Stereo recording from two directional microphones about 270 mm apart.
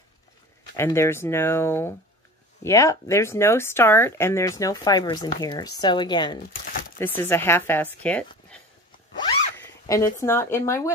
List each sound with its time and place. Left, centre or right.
0.7 s speech: centre
9.1 s zipper: centre